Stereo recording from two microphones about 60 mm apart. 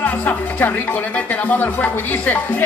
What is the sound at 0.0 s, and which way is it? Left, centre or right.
Speech, left.